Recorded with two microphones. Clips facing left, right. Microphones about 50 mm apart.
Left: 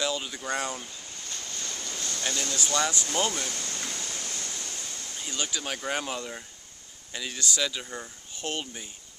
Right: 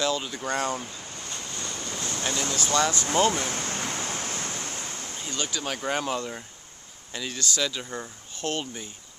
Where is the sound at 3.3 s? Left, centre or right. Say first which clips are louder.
Right 5 dB; right.